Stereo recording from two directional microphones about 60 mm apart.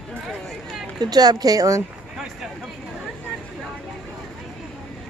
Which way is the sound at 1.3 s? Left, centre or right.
Right.